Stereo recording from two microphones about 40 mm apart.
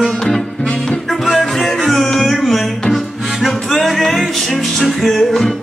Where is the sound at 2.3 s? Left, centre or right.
Centre.